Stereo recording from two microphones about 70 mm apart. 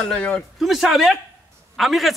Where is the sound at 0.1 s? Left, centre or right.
Centre.